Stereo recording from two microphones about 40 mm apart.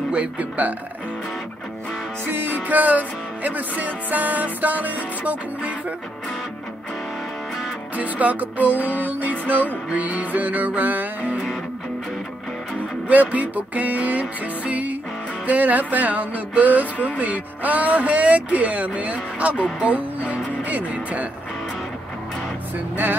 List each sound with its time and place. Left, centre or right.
0.1 s speech: right
2.2 s music: right
2.5 s music: right
7.9 s music: right
13.1 s speech: right
15.4 s music: right
17.2 s speech: right
19.8 s music: right